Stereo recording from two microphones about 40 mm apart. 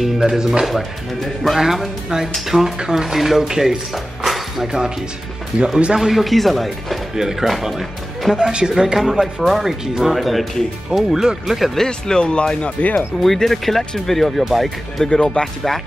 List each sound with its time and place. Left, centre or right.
0.0 s speech: centre
0.7 s speech: centre
5.5 s speech: right
5.9 s speech: centre
8.4 s speech: centre
11.7 s speech: centre
12.2 s speech: left
13.2 s speech: centre